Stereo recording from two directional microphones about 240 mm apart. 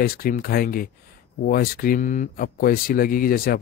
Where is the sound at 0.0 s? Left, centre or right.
Left.